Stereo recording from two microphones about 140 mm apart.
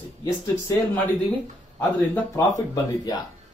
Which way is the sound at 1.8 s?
15° left (ahead or behind).